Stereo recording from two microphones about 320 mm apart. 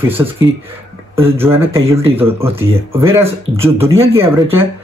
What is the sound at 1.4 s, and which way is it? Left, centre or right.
Speech, centre.